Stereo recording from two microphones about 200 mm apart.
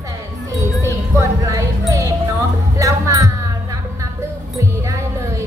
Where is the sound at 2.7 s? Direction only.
15° right (ahead or behind).